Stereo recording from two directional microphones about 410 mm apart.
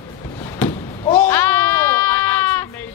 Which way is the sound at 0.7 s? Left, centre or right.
Centre.